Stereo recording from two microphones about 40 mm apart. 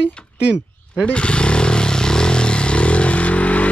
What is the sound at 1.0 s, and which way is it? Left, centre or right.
Motorcycle, left.